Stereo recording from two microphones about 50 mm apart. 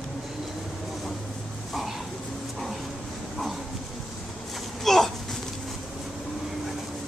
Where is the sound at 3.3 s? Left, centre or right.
Centre.